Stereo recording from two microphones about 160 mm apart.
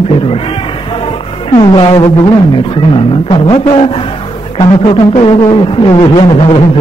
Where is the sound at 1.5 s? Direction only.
30° left (ahead or behind).